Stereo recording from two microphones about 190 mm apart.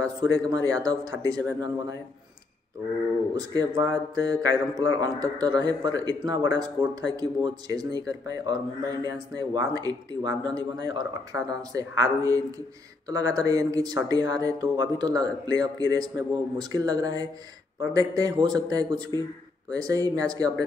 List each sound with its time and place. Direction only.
0.0 s speech: 20° right (ahead or behind)
0.6 s speech: 80° left
0.8 s speech: 20° right (ahead or behind)
3.3 s speech: 20° right (ahead or behind)